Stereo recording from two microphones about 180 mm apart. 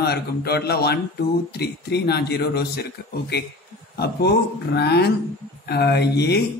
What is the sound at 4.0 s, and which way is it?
Speech, 65° left (ahead or behind).